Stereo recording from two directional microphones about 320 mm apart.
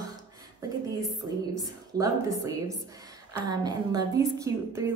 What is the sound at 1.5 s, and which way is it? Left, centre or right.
A woman's voice, centre.